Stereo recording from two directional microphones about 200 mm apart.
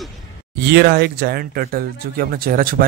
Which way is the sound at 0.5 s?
55° right (ahead or behind).